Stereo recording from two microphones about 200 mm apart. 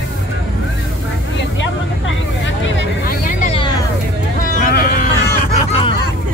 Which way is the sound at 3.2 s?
35° left (ahead or behind).